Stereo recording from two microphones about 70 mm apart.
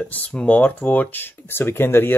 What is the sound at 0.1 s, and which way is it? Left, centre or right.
Speech, left.